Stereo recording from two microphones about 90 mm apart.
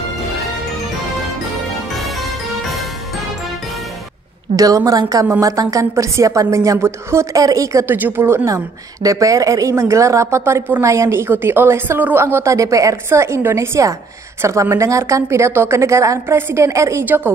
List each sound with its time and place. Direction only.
2.0 s music: centre (ahead or behind)
4.6 s a woman's voice: 40° right (ahead or behind)
7.8 s a woman's voice: 20° right (ahead or behind)
8.5 s a woman's voice: 35° right (ahead or behind)
17.0 s a woman's voice: 20° right (ahead or behind)